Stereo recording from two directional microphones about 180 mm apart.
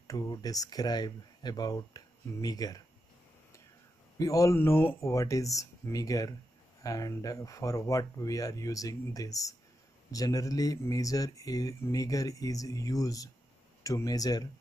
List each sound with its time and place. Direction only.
0.0 s speech: 20° left (ahead or behind)
4.2 s speech: 20° left (ahead or behind)